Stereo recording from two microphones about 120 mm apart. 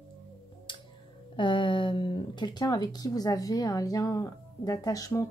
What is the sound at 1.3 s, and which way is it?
Speech, 45° left (ahead or behind).